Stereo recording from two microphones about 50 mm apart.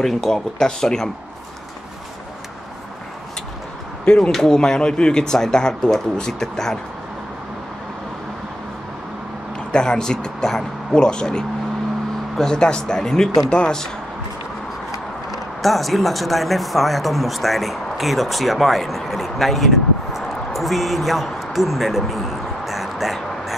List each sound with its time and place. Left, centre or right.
0.0 s speech: centre
4.2 s speech: centre
9.7 s speech: centre
15.3 s speech: centre